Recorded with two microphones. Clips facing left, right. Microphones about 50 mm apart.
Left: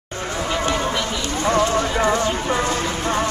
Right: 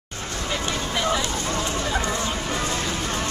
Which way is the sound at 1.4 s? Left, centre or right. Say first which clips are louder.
Left 9 dB; left.